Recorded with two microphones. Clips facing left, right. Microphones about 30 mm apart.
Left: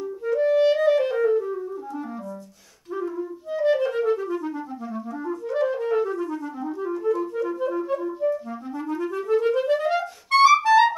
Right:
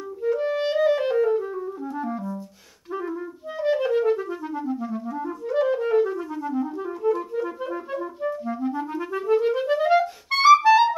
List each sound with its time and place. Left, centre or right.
0.2 s clarinet: centre
1.2 s music: centre
2.9 s clarinet: right
3.6 s clarinet: centre